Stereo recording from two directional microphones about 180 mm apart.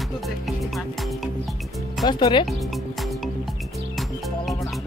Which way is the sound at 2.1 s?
25° left (ahead or behind).